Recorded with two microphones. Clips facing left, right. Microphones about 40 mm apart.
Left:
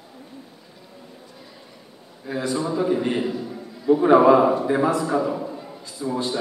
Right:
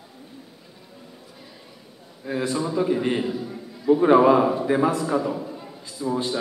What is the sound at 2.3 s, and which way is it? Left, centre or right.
A man's voice, centre.